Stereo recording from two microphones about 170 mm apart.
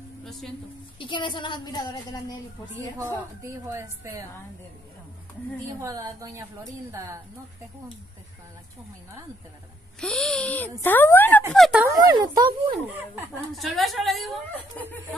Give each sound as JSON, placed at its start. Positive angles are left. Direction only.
{"t": 0.2, "sound": "music", "side_deg": 0}
{"t": 0.9, "sound": "a woman's voice", "side_deg": 30}
{"t": 3.0, "sound": "a woman's voice", "side_deg": -15}
{"t": 5.8, "sound": "a woman's voice", "side_deg": -20}
{"t": 9.9, "sound": "a woman's voice", "side_deg": 5}
{"t": 11.5, "sound": "speech", "side_deg": 0}
{"t": 11.8, "sound": "speech", "side_deg": -20}
{"t": 13.5, "sound": "a woman's voice", "side_deg": 0}